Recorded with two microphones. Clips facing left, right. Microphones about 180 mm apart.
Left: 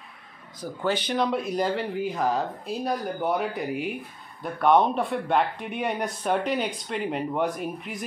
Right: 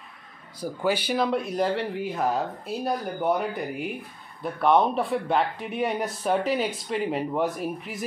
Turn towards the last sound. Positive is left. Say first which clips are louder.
# right 1 dB
turn(degrees=0)  # may be behind; listen again after turning